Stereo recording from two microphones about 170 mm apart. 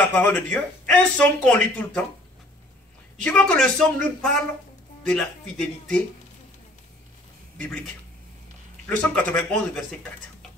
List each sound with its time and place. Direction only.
0.0 s speech: 10° left (ahead or behind)
3.2 s speech: 5° left (ahead or behind)
7.6 s speech: 5° left (ahead or behind)